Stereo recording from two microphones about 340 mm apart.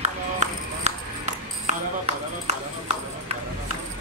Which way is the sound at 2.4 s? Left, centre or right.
Centre.